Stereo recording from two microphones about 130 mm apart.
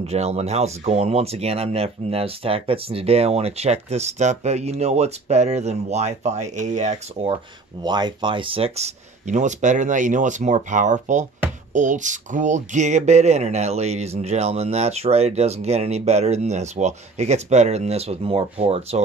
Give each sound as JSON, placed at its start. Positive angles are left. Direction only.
{"t": 0.0, "sound": "speech", "side_deg": -55}
{"t": 7.8, "sound": "speech", "side_deg": -35}